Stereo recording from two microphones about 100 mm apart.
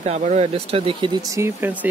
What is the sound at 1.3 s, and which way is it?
Speech, 25° right (ahead or behind).